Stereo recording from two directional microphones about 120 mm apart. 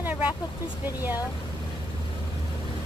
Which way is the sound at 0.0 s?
15° right (ahead or behind).